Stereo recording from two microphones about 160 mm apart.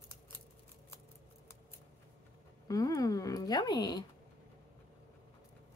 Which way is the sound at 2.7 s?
20° left (ahead or behind).